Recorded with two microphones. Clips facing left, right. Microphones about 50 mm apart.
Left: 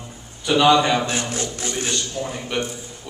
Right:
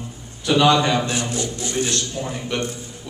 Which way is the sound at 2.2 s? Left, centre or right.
Centre.